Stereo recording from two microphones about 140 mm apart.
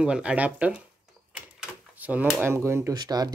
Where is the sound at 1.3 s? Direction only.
10° right (ahead or behind).